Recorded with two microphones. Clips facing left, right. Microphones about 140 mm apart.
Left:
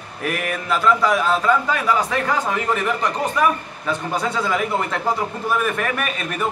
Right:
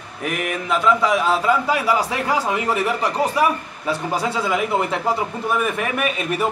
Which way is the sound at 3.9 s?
5° right (ahead or behind).